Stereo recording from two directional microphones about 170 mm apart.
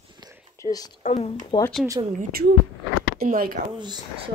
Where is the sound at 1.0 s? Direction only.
40° left (ahead or behind).